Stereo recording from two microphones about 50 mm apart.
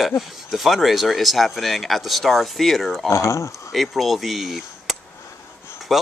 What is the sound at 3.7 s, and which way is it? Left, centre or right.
Speech, centre.